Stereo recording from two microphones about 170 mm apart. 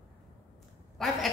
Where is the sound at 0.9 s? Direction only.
Centre (ahead or behind).